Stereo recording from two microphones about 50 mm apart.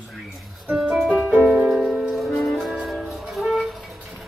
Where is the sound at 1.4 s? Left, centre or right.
Centre.